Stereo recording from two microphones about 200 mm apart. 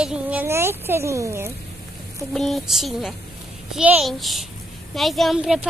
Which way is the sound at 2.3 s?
Centre (ahead or behind).